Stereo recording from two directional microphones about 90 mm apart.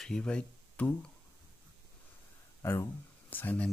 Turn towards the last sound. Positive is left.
turn(degrees=20)  # may be behind; listen again after turning